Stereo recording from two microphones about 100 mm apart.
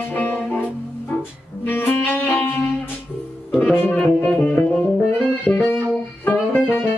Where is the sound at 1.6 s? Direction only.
20° left (ahead or behind).